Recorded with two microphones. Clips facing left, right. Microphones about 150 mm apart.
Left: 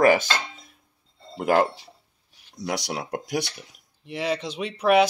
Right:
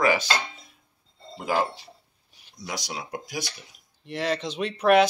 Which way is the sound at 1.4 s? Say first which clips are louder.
Left 5 dB; 60° left (ahead or behind).